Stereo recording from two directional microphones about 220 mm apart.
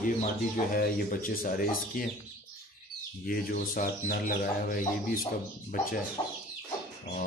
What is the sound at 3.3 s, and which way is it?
Speech, 40° left (ahead or behind).